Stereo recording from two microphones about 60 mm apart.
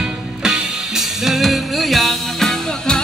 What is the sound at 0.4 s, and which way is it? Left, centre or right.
Music, centre.